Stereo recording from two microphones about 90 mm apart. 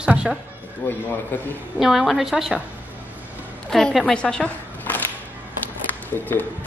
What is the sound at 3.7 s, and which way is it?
A woman's voice, 5° left (ahead or behind).